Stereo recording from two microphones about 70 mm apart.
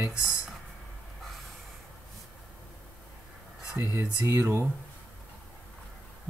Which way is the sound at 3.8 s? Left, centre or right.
Right.